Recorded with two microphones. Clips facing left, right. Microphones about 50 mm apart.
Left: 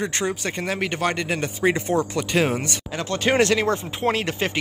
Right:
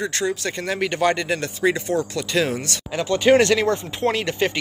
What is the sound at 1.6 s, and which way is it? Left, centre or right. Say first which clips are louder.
Speech: left 1 dB; left.